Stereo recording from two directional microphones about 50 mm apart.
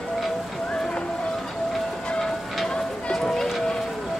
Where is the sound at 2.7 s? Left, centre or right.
Centre.